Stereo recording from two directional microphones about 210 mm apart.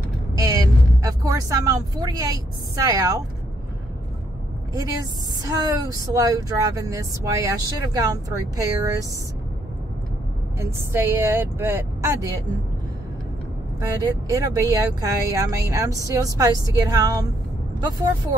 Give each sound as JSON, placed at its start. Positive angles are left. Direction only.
{"t": 0.4, "sound": "vehicle", "side_deg": -15}
{"t": 2.7, "sound": "speech", "side_deg": -15}
{"t": 5.4, "sound": "speech", "side_deg": -15}
{"t": 10.6, "sound": "speech", "side_deg": -10}
{"t": 13.7, "sound": "speech", "side_deg": -15}